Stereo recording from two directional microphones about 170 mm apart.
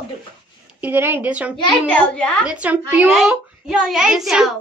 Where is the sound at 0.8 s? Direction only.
10° right (ahead or behind).